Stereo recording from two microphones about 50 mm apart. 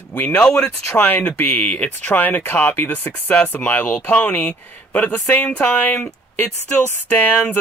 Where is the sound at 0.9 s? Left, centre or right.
Left.